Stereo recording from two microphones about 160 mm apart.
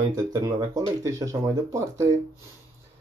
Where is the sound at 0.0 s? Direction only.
25° right (ahead or behind).